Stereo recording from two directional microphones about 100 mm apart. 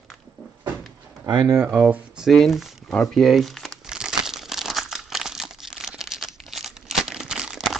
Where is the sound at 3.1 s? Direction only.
Centre (ahead or behind).